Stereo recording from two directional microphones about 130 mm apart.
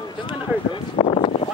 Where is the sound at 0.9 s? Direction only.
45° left (ahead or behind).